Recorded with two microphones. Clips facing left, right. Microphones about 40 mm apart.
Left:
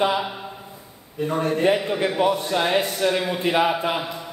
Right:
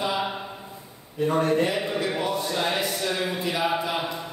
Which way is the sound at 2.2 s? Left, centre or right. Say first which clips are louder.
Left 5 dB; left.